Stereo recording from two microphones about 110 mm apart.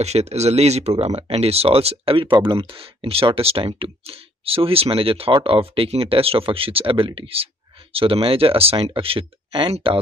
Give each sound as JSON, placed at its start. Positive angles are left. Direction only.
{"t": 0.0, "sound": "speech", "side_deg": -80}